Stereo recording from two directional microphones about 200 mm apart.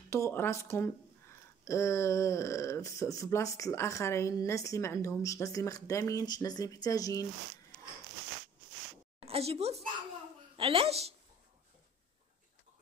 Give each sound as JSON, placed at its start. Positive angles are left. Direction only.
{"t": 0.1, "sound": "speech", "side_deg": 10}
{"t": 9.2, "sound": "a woman's voice", "side_deg": -30}